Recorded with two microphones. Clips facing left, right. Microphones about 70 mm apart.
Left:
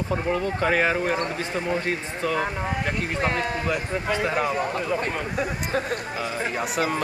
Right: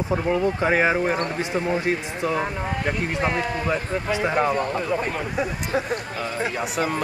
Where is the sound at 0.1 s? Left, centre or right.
Centre.